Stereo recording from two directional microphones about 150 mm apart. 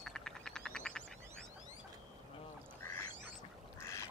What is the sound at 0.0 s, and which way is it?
Frog, 5° left (ahead or behind).